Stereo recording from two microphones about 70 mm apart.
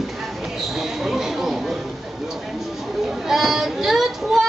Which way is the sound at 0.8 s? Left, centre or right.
Centre.